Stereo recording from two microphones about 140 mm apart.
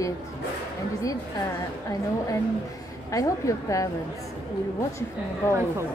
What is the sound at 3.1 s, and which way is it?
Speech, 25° left (ahead or behind).